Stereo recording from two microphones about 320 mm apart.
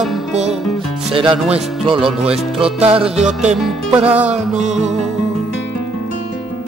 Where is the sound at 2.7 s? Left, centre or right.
Centre.